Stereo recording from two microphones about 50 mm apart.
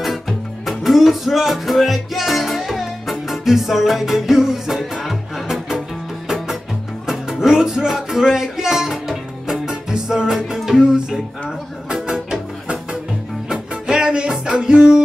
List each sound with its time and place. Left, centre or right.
0.7 s music: centre